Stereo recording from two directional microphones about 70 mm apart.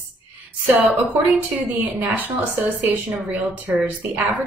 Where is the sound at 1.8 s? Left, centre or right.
Right.